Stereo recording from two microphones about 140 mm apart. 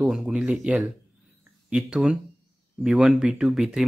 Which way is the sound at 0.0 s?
5° right (ahead or behind).